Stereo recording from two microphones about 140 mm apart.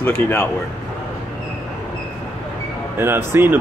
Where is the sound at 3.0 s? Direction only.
15° right (ahead or behind).